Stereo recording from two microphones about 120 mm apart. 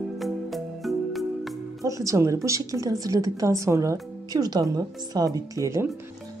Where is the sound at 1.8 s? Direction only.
30° right (ahead or behind).